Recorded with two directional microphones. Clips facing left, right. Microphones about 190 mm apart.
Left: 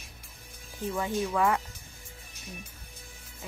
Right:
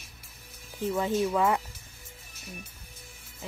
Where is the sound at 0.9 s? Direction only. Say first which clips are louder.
Right 2 dB; 20° right (ahead or behind).